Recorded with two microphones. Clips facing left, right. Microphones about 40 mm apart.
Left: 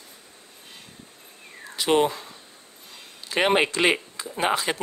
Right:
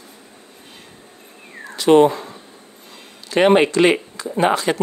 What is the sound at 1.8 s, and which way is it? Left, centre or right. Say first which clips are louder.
Speech: right 9 dB; centre.